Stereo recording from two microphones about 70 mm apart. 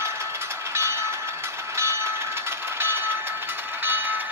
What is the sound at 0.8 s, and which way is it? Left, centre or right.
Train, right.